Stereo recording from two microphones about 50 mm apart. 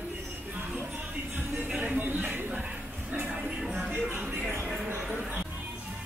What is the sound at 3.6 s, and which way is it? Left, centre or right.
Music, centre.